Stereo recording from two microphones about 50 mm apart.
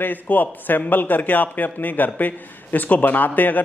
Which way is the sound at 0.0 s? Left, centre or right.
Left.